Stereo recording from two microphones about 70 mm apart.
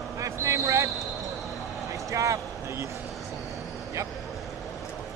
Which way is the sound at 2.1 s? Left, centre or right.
Right.